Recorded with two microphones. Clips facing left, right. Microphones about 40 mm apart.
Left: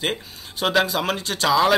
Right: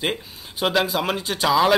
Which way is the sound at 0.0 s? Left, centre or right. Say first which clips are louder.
Even; centre.